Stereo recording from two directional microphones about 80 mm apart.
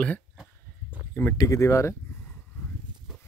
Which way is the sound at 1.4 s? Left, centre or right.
Left.